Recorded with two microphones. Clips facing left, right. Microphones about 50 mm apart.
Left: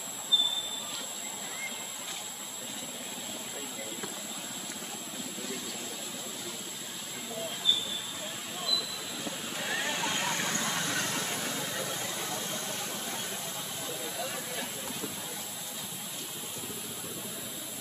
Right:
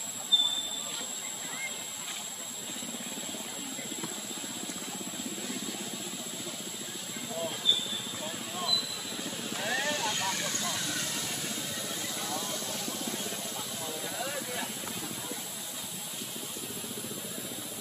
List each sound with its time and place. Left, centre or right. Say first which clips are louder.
8.5 s vehicle: right 1 dB; centre
9.8 s vehicle: even; left
12.2 s vehicle: even; left